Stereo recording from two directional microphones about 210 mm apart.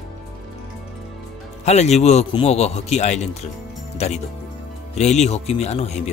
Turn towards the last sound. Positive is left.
turn(degrees=30)  # may be behind; listen again after turning